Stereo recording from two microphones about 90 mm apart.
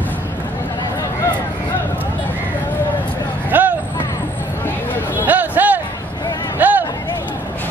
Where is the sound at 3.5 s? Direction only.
20° right (ahead or behind).